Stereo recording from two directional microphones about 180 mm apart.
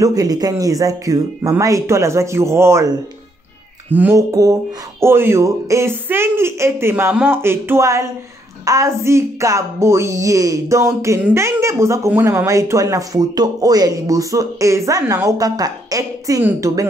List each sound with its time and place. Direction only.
0.0 s speech: 20° right (ahead or behind)
3.9 s speech: 10° right (ahead or behind)